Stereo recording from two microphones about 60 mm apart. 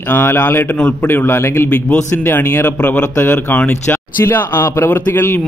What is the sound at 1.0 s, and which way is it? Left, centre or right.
A man's voice, left.